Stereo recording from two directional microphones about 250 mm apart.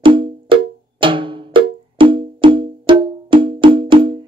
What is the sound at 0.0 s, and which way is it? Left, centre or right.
Cowbell, centre.